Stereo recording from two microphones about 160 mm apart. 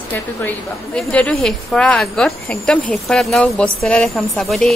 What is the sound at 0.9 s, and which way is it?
Speech, 5° left (ahead or behind).